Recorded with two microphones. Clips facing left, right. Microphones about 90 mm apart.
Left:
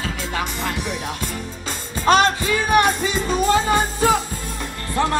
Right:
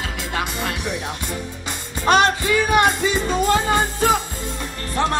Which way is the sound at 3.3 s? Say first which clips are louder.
Left 2 dB; 20° left (ahead or behind).